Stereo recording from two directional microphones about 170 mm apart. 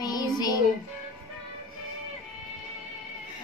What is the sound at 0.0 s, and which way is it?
Music, 25° left (ahead or behind).